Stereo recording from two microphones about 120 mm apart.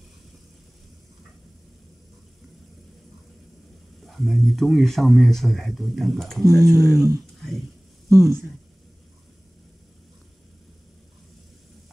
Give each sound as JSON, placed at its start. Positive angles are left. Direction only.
{"t": 4.0, "sound": "speech", "side_deg": 0}
{"t": 6.4, "sound": "speech", "side_deg": -30}